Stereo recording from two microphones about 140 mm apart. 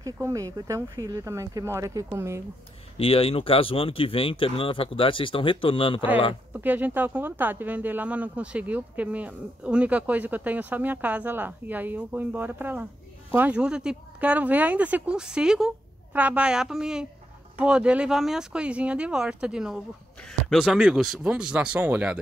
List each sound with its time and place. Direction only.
0.0 s speech: 25° right (ahead or behind)
3.0 s speech: 40° left (ahead or behind)
6.5 s speech: 10° right (ahead or behind)